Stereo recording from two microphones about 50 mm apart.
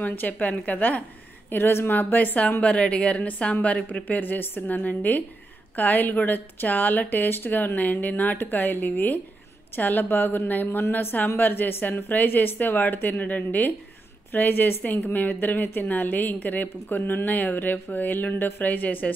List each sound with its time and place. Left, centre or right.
0.0 s speech: left
1.5 s speech: left
2.0 s speech: left
2.6 s a woman's voice: left
4.2 s speech: left